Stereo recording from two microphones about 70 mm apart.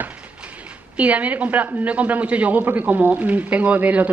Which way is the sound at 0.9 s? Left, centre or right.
Centre.